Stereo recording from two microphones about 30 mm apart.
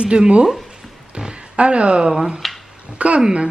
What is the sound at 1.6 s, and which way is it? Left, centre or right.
Speech, right.